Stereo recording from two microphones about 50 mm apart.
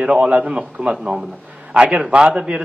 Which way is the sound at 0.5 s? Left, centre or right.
Centre.